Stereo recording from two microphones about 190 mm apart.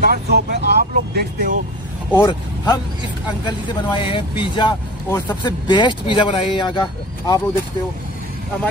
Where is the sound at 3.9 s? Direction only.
25° left (ahead or behind).